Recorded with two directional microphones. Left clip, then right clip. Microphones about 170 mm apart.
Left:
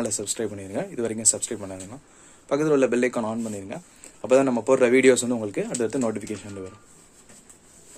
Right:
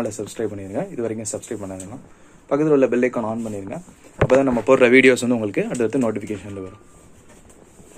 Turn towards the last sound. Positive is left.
turn(degrees=15)  # may be behind; listen again after turning